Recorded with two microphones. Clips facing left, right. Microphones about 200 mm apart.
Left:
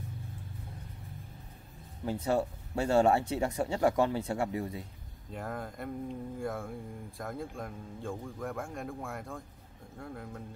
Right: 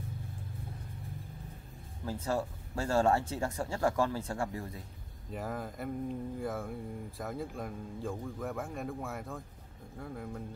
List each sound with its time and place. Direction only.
2.2 s speech: 20° left (ahead or behind)
5.3 s speech: 5° right (ahead or behind)